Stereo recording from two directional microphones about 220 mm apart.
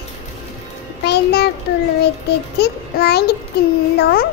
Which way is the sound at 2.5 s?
50° left (ahead or behind).